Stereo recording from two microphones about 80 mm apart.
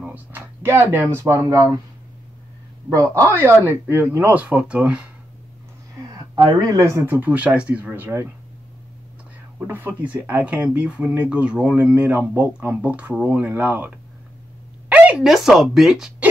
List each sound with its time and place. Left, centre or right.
0.0 s a sound: right
1.2 s speech: right
2.9 s speech: right
3.3 s speech: right
6.3 s speech: right
7.2 s speech: centre
9.6 s speech: right
14.9 s a sound: centre
15.2 s speech: centre